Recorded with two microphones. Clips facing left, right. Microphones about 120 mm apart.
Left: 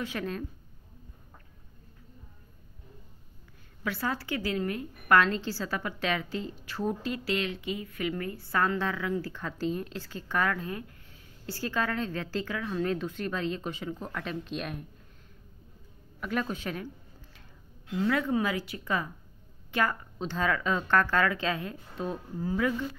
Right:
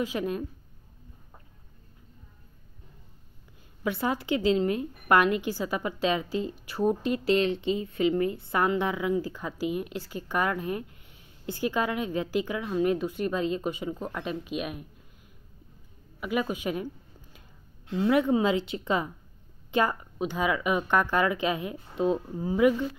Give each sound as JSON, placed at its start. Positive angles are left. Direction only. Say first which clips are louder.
{"t": 0.0, "sound": "a woman's voice", "louder": "right 5 dB", "side_deg": -15}
{"t": 3.8, "sound": "a woman's voice", "louder": "right 4 dB", "side_deg": -20}
{"t": 16.2, "sound": "a woman's voice", "louder": "right 3 dB", "side_deg": -10}